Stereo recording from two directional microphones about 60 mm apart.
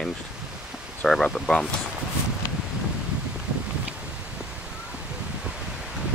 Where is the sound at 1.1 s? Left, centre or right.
Centre.